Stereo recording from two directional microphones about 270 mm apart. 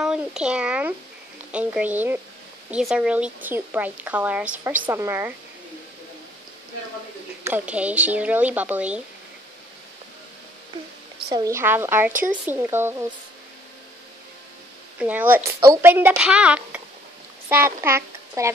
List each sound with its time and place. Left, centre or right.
0.0 s speech: centre
7.4 s speech: centre
11.3 s speech: centre
15.0 s a child's voice: centre